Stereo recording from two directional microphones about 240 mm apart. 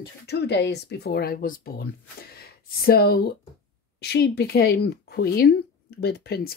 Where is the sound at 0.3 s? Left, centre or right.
Left.